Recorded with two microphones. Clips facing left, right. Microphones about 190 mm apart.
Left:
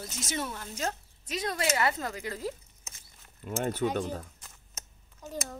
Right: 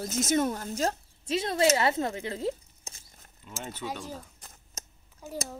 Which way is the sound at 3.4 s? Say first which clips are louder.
Left 9 dB; 55° left (ahead or behind).